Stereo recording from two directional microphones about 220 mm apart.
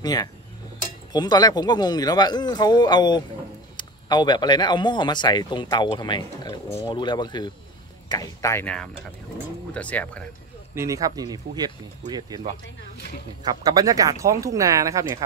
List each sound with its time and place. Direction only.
0.0 s speech: 15° left (ahead or behind)
10.7 s speech: 15° right (ahead or behind)
13.4 s speech: 15° right (ahead or behind)